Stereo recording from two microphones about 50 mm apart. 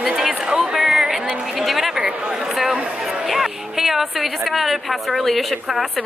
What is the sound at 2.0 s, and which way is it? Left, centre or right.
Chatter, centre.